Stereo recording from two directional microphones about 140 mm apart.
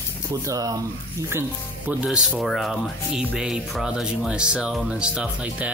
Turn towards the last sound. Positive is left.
turn(degrees=-10)  # may be behind; listen again after turning